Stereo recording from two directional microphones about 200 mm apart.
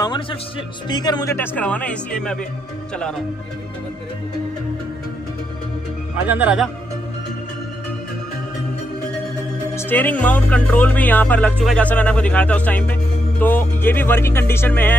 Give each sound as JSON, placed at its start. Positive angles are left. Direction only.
{"t": 0.0, "sound": "a man's voice", "side_deg": 20}
{"t": 6.2, "sound": "speech", "side_deg": -5}
{"t": 9.8, "sound": "speech", "side_deg": 10}